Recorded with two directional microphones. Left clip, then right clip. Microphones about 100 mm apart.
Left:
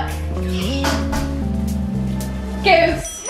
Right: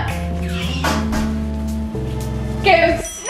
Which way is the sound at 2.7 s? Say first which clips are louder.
Even; 15° left (ahead or behind).